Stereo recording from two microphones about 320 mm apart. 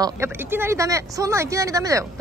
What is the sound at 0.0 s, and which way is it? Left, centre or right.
A woman's voice, centre.